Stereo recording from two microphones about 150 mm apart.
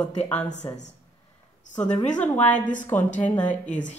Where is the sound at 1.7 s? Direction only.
10° left (ahead or behind).